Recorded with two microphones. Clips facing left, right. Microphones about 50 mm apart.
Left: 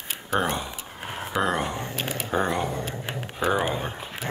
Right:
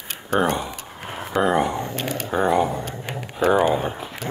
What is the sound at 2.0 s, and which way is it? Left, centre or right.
Speech, right.